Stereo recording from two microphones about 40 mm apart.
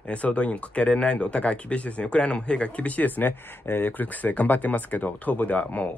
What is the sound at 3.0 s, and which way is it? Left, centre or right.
Speech, left.